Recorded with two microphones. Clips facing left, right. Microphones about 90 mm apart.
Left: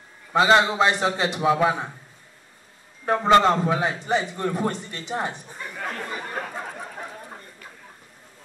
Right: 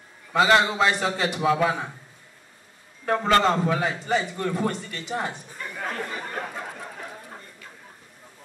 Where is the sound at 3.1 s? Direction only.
20° left (ahead or behind).